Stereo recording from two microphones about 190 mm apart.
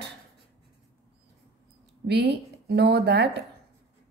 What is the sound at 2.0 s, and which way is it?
A woman's voice, 60° right (ahead or behind).